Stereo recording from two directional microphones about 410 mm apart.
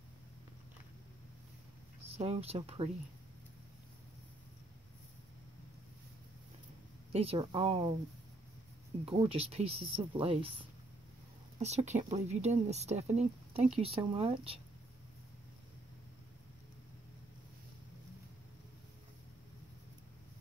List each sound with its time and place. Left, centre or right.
2.0 s speech: centre
7.1 s speech: centre
9.0 s speech: centre
11.6 s speech: centre